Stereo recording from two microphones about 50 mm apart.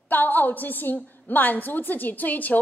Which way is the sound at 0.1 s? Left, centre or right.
Left.